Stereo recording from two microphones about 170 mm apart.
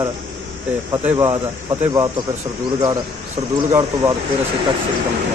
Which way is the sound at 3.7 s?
20° right (ahead or behind).